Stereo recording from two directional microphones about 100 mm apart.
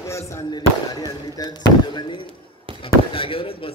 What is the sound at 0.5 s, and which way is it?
Speech, 40° left (ahead or behind).